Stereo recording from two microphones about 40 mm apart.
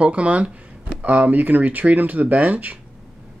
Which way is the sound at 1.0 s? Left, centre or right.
Right.